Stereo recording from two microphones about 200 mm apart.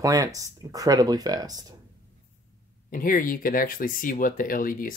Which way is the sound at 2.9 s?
45° left (ahead or behind).